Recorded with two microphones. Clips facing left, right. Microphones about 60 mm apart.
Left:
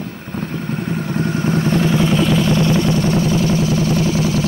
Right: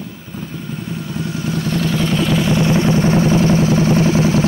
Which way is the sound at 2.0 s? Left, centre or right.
Centre.